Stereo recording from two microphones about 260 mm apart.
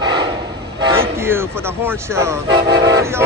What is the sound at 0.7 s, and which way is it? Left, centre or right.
Speech, centre.